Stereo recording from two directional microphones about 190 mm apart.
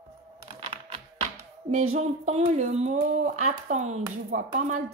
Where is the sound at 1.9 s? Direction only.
35° right (ahead or behind).